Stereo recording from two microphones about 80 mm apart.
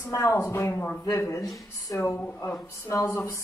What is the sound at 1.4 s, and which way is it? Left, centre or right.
Speech, left.